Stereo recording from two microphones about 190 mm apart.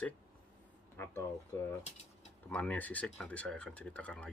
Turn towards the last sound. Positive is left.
turn(degrees=5)  # may be behind; listen again after turning